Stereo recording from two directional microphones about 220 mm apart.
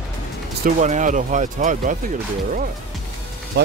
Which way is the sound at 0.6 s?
35° right (ahead or behind).